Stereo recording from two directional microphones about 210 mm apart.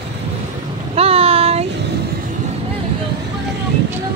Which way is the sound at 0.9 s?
30° right (ahead or behind).